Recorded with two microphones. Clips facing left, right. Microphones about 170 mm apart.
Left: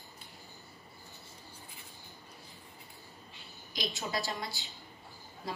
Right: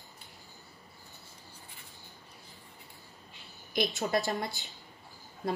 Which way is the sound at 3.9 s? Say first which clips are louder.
Right 5 dB; 65° right (ahead or behind).